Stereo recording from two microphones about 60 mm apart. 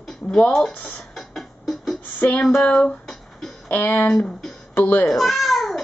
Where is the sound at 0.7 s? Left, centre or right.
Left.